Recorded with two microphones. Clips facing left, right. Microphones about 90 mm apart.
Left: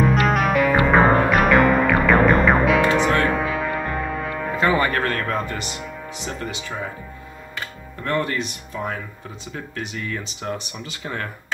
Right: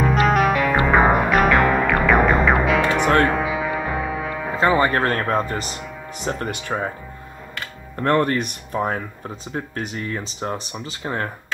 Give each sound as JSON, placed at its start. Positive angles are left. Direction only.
{"t": 0.3, "sound": "music", "side_deg": 0}
{"t": 4.6, "sound": "music", "side_deg": -25}
{"t": 5.2, "sound": "speech", "side_deg": -35}
{"t": 6.1, "sound": "speech", "side_deg": -50}
{"t": 8.0, "sound": "speech", "side_deg": -50}